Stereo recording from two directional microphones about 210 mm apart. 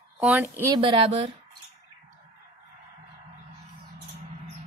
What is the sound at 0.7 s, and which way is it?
Speech, 25° right (ahead or behind).